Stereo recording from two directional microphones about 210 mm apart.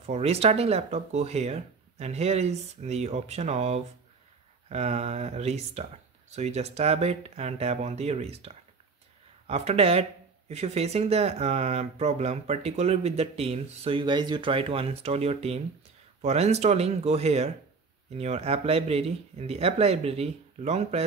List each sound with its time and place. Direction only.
0.0 s speech: 30° right (ahead or behind)